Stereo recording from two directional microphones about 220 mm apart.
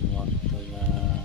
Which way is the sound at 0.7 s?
Centre (ahead or behind).